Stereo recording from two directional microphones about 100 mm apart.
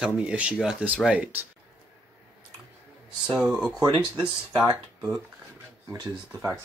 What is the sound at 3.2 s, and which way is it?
Speech, 10° right (ahead or behind).